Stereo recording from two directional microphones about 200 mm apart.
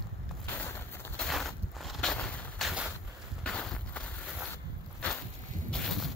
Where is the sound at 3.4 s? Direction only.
5° left (ahead or behind).